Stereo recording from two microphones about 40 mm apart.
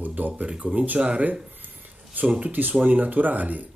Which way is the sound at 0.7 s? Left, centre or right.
Right.